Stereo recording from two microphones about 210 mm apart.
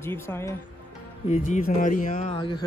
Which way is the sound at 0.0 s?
10° left (ahead or behind).